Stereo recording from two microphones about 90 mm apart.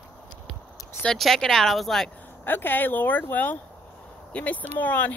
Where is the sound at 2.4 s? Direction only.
20° left (ahead or behind).